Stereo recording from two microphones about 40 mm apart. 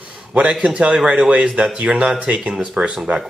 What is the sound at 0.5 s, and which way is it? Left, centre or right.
Speech, centre.